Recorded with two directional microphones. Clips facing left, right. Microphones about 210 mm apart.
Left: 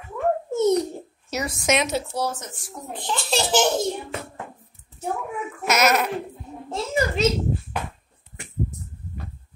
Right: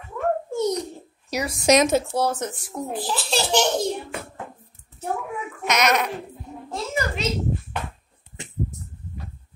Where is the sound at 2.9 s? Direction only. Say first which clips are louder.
Left 1 dB; 5° right (ahead or behind).